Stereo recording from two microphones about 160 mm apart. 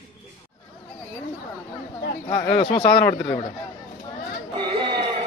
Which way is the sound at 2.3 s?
30° left (ahead or behind).